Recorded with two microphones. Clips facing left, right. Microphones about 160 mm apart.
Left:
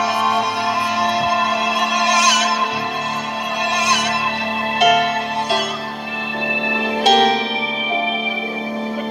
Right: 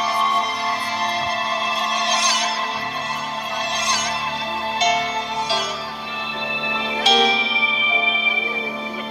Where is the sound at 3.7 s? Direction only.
70° left (ahead or behind).